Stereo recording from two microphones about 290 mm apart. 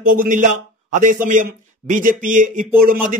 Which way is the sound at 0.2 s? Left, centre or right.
Right.